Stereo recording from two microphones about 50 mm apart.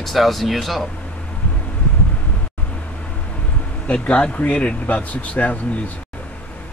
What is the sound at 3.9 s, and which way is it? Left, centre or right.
A man's voice, left.